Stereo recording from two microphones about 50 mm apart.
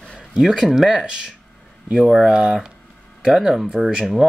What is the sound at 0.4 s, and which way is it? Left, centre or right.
Speech, centre.